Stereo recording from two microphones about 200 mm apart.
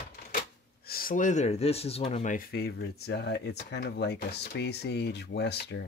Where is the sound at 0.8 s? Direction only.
45° left (ahead or behind).